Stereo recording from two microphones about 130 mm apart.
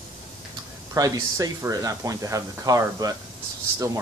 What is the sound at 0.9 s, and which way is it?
Speech, 30° right (ahead or behind).